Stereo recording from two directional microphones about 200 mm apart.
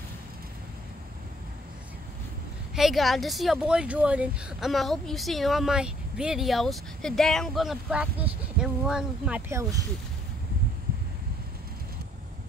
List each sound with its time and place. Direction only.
2.7 s speech: centre (ahead or behind)
9.5 s speech: 15° right (ahead or behind)